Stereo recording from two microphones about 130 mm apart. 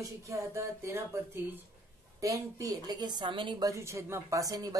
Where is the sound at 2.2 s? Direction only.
25° right (ahead or behind).